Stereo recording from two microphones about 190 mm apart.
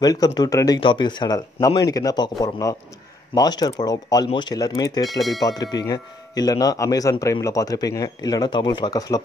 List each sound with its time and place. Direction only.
0.0 s speech: 20° left (ahead or behind)